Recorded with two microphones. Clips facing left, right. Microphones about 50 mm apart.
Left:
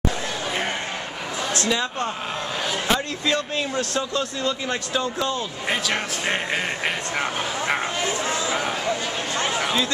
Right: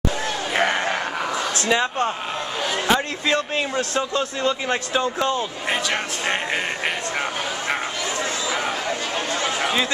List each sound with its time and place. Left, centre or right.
1.7 s a man's voice: right
5.7 s speech: centre
9.6 s a sound: right